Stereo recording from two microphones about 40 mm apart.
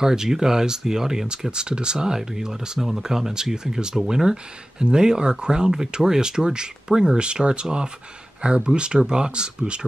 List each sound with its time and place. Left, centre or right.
0.0 s speech: centre